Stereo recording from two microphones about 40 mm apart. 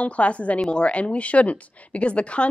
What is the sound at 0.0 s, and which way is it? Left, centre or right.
A woman's voice, left.